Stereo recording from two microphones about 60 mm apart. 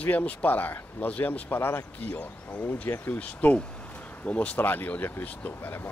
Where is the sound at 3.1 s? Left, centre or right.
Left.